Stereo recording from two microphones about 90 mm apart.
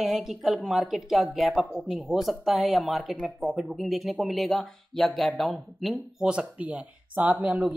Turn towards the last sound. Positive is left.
turn(degrees=-15)  # may be behind; listen again after turning